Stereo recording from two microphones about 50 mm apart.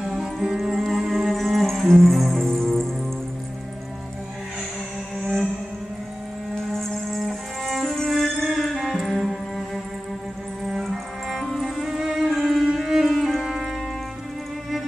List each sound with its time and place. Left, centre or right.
0.0 s music: centre
6.5 s music: centre
10.8 s music: centre
11.8 s music: centre